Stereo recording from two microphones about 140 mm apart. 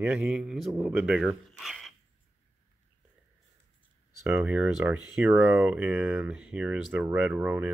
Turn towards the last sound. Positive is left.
turn(degrees=-10)  # may be behind; listen again after turning